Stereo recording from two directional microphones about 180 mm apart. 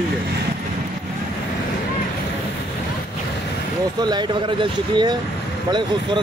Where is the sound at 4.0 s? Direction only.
25° right (ahead or behind).